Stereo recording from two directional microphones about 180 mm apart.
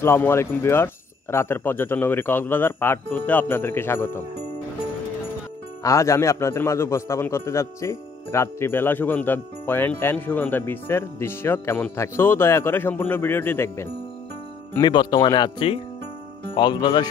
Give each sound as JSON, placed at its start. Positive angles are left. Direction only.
{"t": 0.0, "sound": "a man's voice", "side_deg": 10}
{"t": 5.8, "sound": "a man's voice", "side_deg": 15}
{"t": 14.8, "sound": "speech", "side_deg": 25}